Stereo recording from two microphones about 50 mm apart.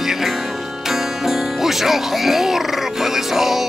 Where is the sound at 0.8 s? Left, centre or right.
Centre.